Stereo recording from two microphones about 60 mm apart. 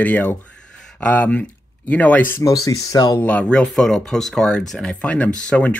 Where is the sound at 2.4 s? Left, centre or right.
Left.